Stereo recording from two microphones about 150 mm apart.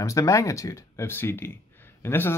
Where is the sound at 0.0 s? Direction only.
20° left (ahead or behind).